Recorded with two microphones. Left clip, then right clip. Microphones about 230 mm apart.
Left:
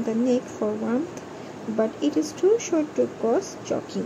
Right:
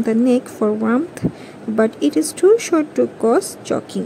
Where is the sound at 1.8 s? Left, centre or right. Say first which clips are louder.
Right 7 dB; right.